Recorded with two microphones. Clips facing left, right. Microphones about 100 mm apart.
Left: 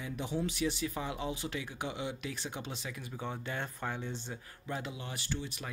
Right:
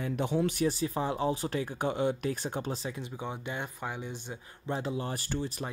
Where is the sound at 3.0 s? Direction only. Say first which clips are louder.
Right 3 dB; 20° right (ahead or behind); by 5.7 s 40° right (ahead or behind).